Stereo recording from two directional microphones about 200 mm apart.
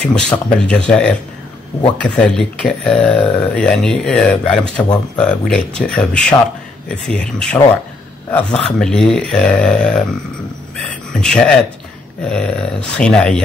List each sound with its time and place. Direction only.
0.0 s speech: 5° left (ahead or behind)
4.8 s speech: 20° left (ahead or behind)
5.2 s speech: 5° left (ahead or behind)
11.1 s speech: 5° left (ahead or behind)